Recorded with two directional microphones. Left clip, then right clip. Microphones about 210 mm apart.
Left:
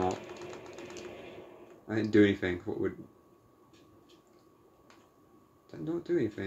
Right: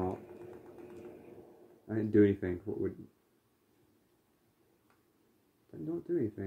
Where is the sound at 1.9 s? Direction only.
20° right (ahead or behind).